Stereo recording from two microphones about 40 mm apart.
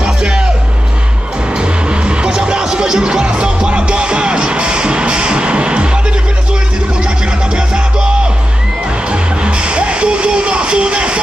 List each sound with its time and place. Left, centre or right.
0.0 s music: centre
1.6 s music: right
7.5 s music: right
9.1 s music: right